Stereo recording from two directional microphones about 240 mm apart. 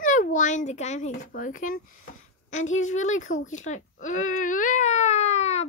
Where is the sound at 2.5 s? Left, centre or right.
Left.